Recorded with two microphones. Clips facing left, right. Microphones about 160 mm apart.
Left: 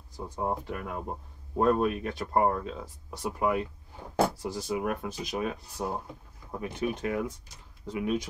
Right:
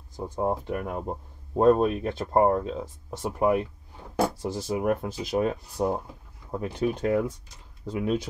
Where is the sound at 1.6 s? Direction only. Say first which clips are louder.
Right 5 dB; 25° right (ahead or behind).